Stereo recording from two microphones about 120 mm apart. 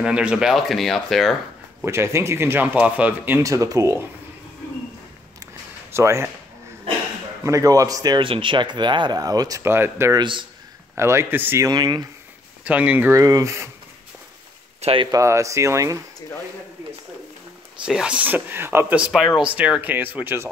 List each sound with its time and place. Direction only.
0.0 s speech: 10° right (ahead or behind)
1.9 s speech: 25° right (ahead or behind)
5.9 s speech: 20° right (ahead or behind)
7.4 s speech: 30° right (ahead or behind)
9.6 s speech: 20° right (ahead or behind)
10.1 s speech: 45° right (ahead or behind)
11.0 s speech: 20° right (ahead or behind)
11.7 s speech: 35° right (ahead or behind)
12.6 s speech: 10° right (ahead or behind)
13.1 s speech: 25° right (ahead or behind)
14.8 s speech: 55° right (ahead or behind)
15.0 s speech: 25° right (ahead or behind)
17.8 s speech: 5° right (ahead or behind)